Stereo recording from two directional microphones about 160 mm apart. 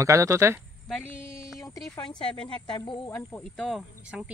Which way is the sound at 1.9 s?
30° left (ahead or behind).